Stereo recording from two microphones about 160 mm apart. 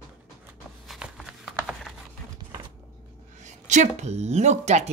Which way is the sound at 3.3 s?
50° right (ahead or behind).